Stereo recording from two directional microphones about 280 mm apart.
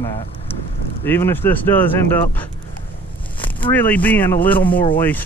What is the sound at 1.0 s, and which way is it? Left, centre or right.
Speech, centre.